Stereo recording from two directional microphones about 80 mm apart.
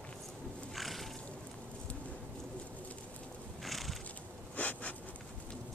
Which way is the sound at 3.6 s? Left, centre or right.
Centre.